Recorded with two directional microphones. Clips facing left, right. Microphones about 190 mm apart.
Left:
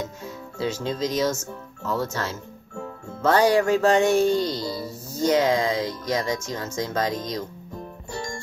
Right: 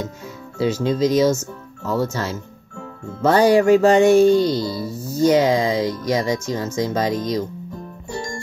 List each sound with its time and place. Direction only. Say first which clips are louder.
0.6 s music: right 7 dB; 5° right (ahead or behind)
5.2 s speech: right 5 dB; 5° right (ahead or behind)